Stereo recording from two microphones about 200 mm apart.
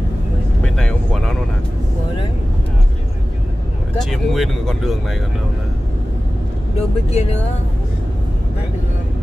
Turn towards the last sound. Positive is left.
turn(degrees=30)  # may be behind; listen again after turning